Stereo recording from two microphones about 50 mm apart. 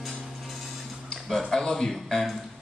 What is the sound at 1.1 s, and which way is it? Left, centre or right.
Speech, centre.